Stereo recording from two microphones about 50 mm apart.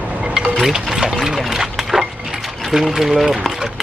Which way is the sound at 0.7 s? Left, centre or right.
Centre.